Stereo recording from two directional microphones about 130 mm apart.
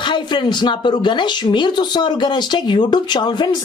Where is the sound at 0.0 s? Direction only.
40° left (ahead or behind).